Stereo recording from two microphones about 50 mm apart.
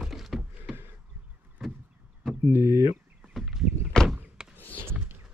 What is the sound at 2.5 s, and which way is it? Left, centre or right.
Speech, right.